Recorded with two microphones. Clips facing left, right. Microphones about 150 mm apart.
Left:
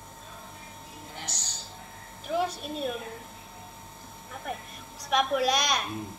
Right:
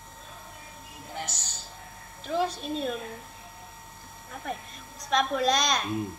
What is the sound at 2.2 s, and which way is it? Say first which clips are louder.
Speech: right 1 dB; 5° left (ahead or behind).